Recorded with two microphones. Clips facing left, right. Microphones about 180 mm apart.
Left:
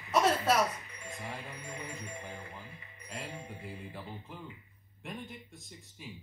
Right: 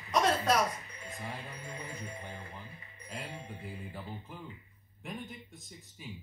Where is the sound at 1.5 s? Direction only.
15° left (ahead or behind).